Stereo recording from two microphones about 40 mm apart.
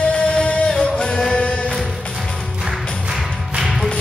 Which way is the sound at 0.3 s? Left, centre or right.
Left.